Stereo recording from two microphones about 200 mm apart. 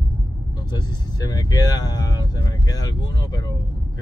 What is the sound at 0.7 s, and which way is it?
Speech, 20° left (ahead or behind).